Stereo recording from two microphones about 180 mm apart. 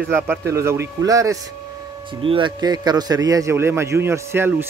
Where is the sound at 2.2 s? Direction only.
30° right (ahead or behind); by 4.5 s 15° right (ahead or behind).